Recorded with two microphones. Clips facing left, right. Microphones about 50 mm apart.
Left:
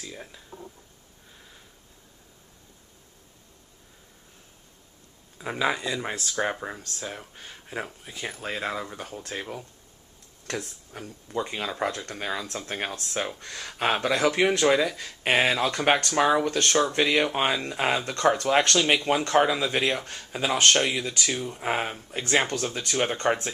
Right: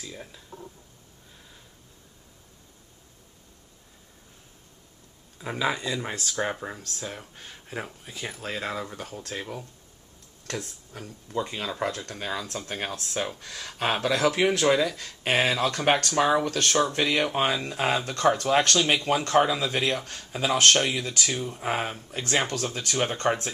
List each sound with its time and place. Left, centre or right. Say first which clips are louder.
0.0 s speech: even; centre
5.4 s speech: left 1 dB; centre